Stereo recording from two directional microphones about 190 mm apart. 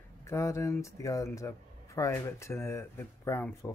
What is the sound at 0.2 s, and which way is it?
Speech, 15° left (ahead or behind).